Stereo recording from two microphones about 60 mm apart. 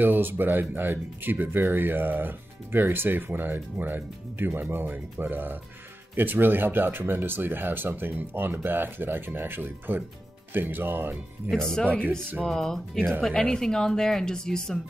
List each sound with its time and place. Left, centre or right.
0.0 s speech: right
12.4 s speech: centre